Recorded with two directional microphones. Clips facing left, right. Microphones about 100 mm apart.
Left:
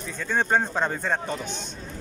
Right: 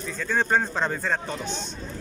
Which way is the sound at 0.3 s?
15° left (ahead or behind).